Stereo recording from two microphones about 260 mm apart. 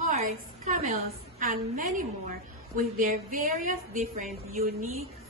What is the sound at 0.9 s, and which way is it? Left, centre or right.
A woman's voice, right.